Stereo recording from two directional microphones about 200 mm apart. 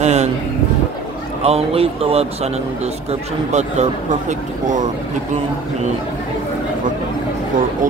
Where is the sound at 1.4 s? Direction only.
30° right (ahead or behind).